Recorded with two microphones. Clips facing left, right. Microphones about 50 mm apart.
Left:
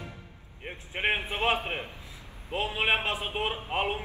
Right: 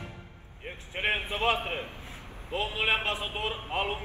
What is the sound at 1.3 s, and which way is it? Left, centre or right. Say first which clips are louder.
A man's voice: even; left.